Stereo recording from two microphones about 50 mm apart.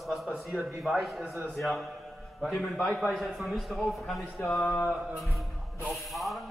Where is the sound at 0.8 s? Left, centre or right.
Centre.